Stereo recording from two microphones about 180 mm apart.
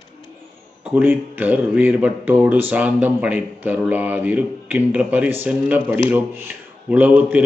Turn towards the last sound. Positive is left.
turn(degrees=-10)  # may be behind; listen again after turning